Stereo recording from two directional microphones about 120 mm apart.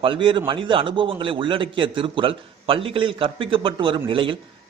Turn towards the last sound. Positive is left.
turn(degrees=-45)  # may be behind; listen again after turning